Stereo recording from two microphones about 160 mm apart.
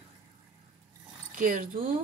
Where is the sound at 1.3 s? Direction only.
55° right (ahead or behind).